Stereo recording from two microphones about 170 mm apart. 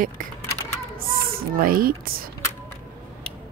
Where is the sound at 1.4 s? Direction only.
60° right (ahead or behind).